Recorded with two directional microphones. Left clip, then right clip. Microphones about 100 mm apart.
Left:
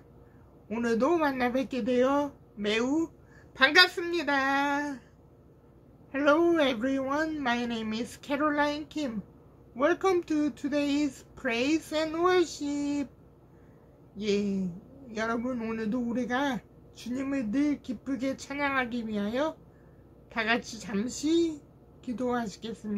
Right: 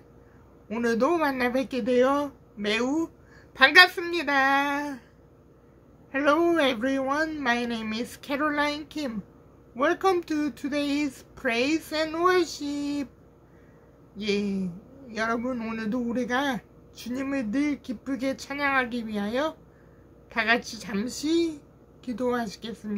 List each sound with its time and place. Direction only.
0.7 s a man's voice: 30° right (ahead or behind)
6.1 s a man's voice: 30° right (ahead or behind)
14.1 s a man's voice: 25° right (ahead or behind)